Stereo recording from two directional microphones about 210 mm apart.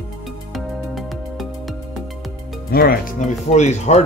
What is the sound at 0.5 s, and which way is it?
Music, centre (ahead or behind).